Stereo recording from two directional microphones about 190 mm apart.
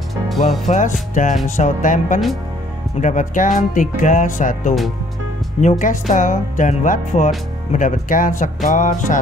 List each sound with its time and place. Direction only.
0.1 s music: centre (ahead or behind)
0.7 s speech: 40° left (ahead or behind)